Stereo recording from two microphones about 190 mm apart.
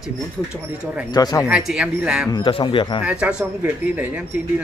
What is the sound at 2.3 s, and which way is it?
Speech, 25° left (ahead or behind).